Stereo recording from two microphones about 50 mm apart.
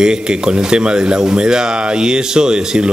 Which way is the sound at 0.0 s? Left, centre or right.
Centre.